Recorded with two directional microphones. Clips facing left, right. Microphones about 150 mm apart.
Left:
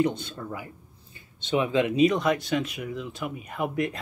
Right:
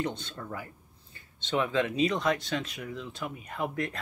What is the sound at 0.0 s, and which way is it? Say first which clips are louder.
Speech: left 8 dB; 10° left (ahead or behind).